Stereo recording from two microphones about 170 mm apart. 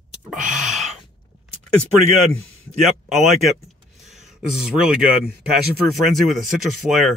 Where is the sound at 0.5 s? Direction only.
45° right (ahead or behind).